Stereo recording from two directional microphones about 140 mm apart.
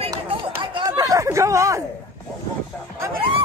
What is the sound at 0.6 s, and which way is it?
Chatter, 30° right (ahead or behind).